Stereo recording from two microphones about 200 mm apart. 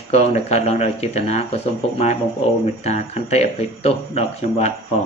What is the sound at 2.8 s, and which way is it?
Speech, 35° left (ahead or behind).